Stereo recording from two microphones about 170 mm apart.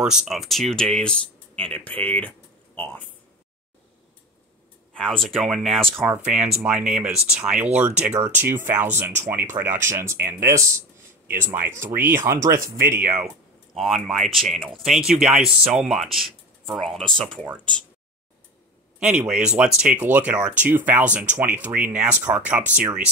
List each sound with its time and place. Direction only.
0.0 s speech: 5° right (ahead or behind)
4.9 s speech: 5° left (ahead or behind)
18.9 s speech: 5° right (ahead or behind)